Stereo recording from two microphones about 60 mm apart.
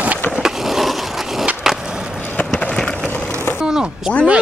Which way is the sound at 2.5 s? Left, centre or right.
Centre.